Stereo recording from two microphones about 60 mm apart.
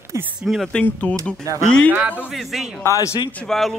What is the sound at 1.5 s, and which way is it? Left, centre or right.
Speech, right.